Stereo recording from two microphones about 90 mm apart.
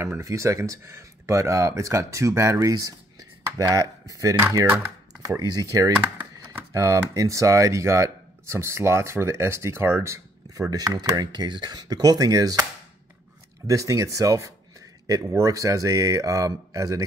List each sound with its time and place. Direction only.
0.0 s speech: 35° right (ahead or behind)
5.4 s speech: 45° right (ahead or behind); by 10.2 s 30° right (ahead or behind)
10.5 s speech: 40° right (ahead or behind)
13.7 s speech: 35° right (ahead or behind)